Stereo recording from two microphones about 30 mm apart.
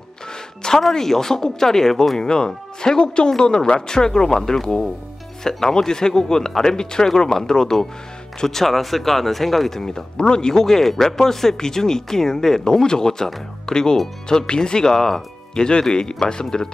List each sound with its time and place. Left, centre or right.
0.6 s speech: left
9.8 s speech: left
10.6 s speech: centre; by 16.4 s left